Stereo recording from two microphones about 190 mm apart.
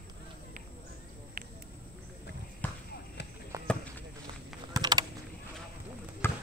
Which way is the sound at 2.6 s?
10° left (ahead or behind).